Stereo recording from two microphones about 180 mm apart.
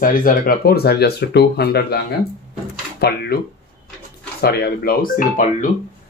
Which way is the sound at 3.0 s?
60° left (ahead or behind).